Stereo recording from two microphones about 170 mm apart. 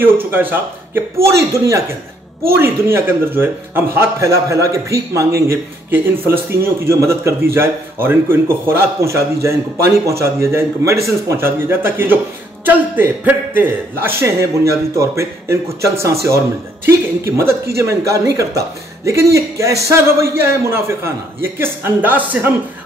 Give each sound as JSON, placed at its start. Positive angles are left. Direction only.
{"t": 0.0, "sound": "a man's voice", "side_deg": -10}